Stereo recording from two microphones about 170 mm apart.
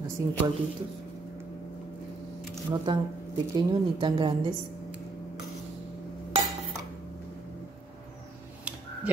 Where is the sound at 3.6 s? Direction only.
25° right (ahead or behind).